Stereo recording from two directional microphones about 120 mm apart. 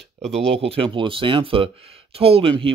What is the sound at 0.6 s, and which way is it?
Speech, 50° right (ahead or behind).